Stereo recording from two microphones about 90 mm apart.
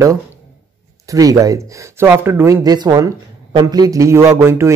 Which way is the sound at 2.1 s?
25° right (ahead or behind).